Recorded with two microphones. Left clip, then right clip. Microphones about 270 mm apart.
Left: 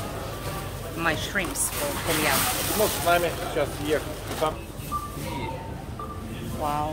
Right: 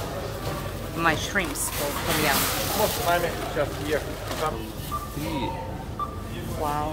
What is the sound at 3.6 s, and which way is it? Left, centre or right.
Speech, left.